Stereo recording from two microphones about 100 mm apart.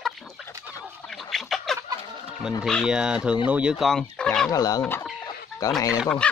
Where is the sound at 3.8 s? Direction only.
5° left (ahead or behind).